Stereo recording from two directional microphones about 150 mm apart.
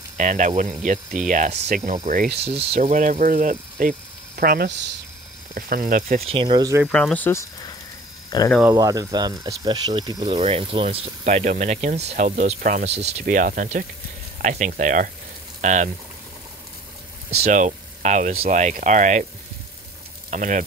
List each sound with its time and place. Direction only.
0.2 s speech: 55° right (ahead or behind)
2.8 s speech: 60° right (ahead or behind)
4.4 s speech: 90° right
5.5 s speech: 70° right (ahead or behind)
6.2 s speech: 35° right (ahead or behind)
6.9 s speech: 5° left (ahead or behind)
8.3 s speech: 30° left (ahead or behind)
8.7 s speech: 25° right (ahead or behind); by 12.5 s 50° right (ahead or behind)
12.5 s speech: 65° right (ahead or behind)
12.9 s speech: 50° right (ahead or behind)
14.4 s speech: 50° right (ahead or behind)
17.4 s speech: 55° right (ahead or behind)
20.2 s speech: 60° right (ahead or behind)